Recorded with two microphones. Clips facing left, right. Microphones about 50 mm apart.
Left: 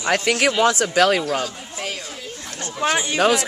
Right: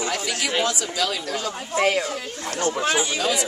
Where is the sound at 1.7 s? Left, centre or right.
Right.